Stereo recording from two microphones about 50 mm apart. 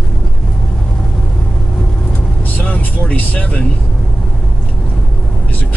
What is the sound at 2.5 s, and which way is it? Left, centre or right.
Vehicle, left.